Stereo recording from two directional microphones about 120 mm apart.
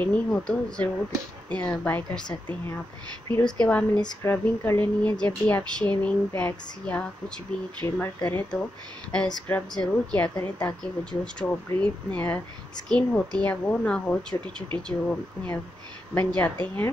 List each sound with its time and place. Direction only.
0.0 s a woman's voice: 10° left (ahead or behind)
3.4 s a woman's voice: 10° left (ahead or behind)